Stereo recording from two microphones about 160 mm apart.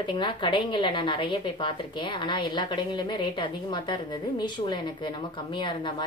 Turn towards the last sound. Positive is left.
turn(degrees=30)  # may be behind; listen again after turning